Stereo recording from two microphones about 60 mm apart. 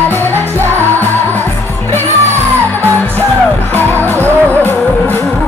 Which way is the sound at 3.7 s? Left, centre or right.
Left.